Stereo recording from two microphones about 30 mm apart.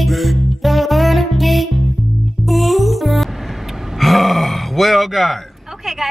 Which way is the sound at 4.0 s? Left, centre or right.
Centre.